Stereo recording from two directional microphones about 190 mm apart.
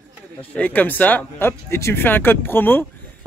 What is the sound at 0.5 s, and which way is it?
Speech, 10° left (ahead or behind).